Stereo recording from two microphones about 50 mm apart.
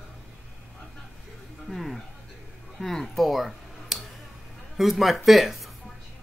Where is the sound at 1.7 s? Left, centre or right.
Centre.